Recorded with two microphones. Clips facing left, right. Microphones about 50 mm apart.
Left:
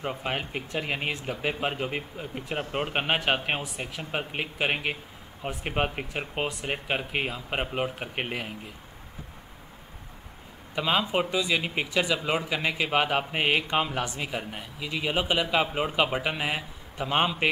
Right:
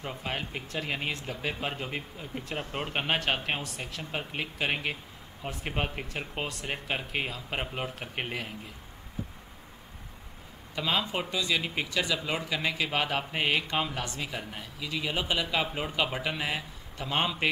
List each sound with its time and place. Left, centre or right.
0.0 s a man's voice: left
10.7 s a man's voice: centre